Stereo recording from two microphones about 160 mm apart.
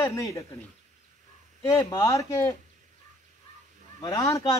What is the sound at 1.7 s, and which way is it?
Speech, 20° left (ahead or behind).